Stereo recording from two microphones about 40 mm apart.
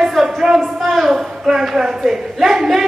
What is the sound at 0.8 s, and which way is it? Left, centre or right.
Speech, centre.